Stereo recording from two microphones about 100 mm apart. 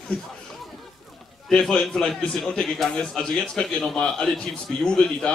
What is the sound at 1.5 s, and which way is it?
A man's voice, 5° left (ahead or behind).